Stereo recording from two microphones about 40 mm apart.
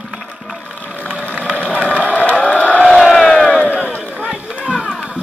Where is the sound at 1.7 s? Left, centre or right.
Left.